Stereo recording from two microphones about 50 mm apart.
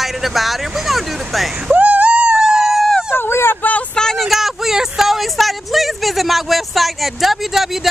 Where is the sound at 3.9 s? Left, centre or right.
Centre.